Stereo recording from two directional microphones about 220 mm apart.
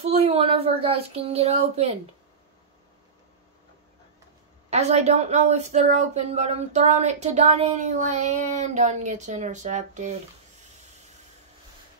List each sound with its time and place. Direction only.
0.0 s speech: 25° right (ahead or behind)
4.6 s a woman's voice: 30° right (ahead or behind)
10.7 s rail transport: 30° right (ahead or behind)